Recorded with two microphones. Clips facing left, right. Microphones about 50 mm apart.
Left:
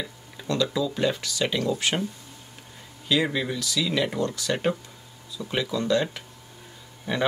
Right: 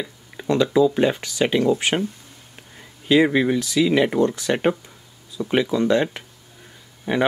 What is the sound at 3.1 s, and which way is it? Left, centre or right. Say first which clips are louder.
Speech: right 8 dB; right.